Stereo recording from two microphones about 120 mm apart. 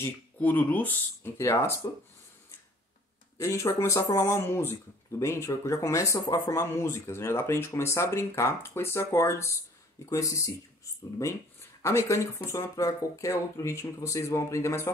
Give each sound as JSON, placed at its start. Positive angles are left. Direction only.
{"t": 0.0, "sound": "speech", "side_deg": 15}
{"t": 3.3, "sound": "speech", "side_deg": 25}
{"t": 11.8, "sound": "speech", "side_deg": 25}